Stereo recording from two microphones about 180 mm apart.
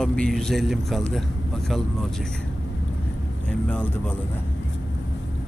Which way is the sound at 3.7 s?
10° left (ahead or behind).